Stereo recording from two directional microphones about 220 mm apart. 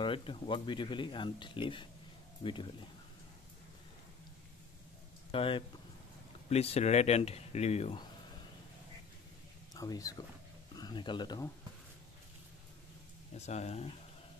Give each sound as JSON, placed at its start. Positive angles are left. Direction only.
{"t": 0.0, "sound": "speech", "side_deg": 25}
{"t": 5.3, "sound": "speech", "side_deg": 25}
{"t": 9.8, "sound": "speech", "side_deg": 15}
{"t": 13.3, "sound": "speech", "side_deg": 30}